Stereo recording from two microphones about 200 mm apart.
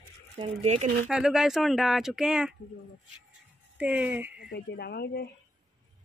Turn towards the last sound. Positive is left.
turn(degrees=55)  # may be behind; listen again after turning